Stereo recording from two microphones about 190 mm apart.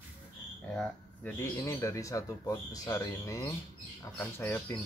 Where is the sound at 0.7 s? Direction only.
10° left (ahead or behind).